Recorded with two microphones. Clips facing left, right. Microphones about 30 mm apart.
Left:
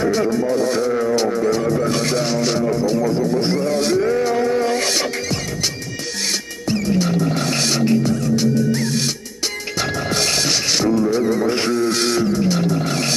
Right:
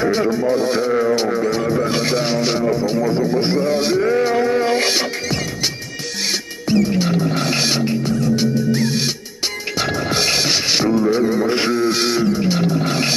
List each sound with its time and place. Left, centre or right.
0.0 s music: centre
6.7 s music: centre